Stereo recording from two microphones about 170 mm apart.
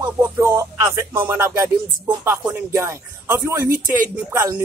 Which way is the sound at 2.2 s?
15° right (ahead or behind).